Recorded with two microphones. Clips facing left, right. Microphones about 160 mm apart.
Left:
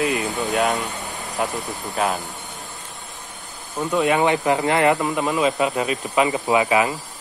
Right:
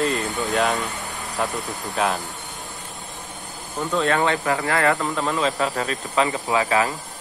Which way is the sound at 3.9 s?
15° left (ahead or behind).